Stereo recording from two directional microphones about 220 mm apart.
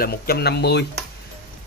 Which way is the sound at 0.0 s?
45° left (ahead or behind).